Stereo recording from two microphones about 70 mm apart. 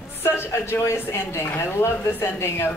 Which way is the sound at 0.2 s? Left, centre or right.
Left.